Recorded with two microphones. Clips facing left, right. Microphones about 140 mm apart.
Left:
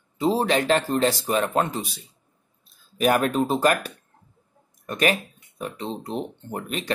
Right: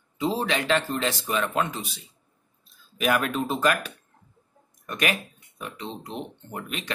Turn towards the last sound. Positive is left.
turn(degrees=40)  # may be behind; listen again after turning